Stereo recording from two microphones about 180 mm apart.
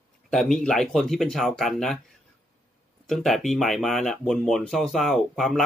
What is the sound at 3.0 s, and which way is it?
Speech, centre (ahead or behind).